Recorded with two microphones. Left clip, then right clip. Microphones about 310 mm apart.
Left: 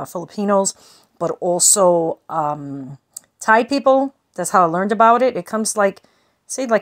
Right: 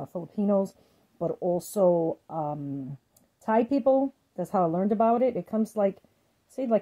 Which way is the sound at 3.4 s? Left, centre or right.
Left.